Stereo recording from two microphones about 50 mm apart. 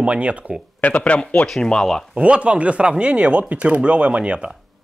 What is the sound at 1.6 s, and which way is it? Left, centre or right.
Speech, centre.